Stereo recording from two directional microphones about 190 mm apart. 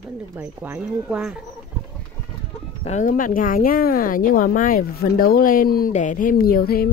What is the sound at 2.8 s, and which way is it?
A woman's voice, 40° left (ahead or behind).